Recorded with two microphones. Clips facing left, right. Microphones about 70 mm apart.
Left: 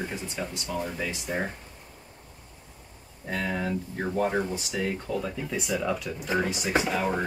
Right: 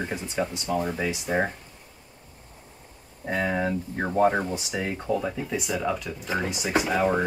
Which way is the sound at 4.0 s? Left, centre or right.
Right.